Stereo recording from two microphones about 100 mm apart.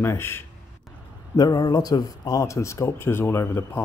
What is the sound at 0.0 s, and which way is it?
Speech, 25° left (ahead or behind).